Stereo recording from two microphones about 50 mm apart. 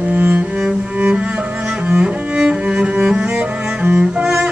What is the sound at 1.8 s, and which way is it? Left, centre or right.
Cello, right.